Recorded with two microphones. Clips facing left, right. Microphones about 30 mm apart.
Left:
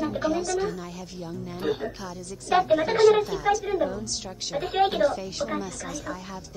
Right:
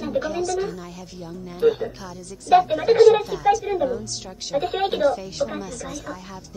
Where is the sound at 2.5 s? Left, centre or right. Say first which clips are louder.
Right 5 dB; centre.